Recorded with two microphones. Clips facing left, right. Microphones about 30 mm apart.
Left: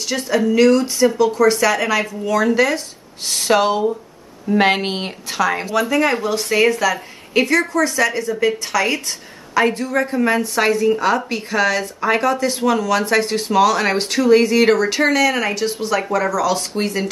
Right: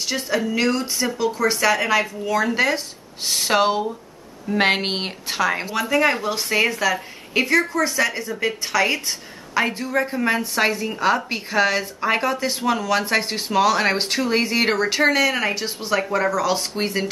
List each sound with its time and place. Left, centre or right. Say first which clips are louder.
0.1 s speech: left 6 dB; centre
2.5 s speech: left 3 dB; centre
3.3 s speech: left 3 dB; centre
12.8 s speech: left 3 dB; centre